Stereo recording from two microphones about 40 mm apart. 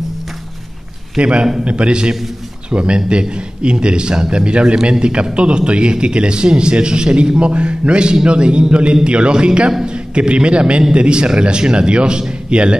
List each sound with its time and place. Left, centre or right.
1.1 s a man's voice: right